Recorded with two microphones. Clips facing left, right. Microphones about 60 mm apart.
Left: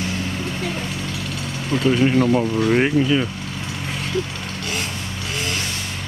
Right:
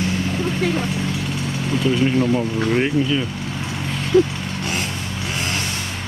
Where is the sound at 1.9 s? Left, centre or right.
Centre.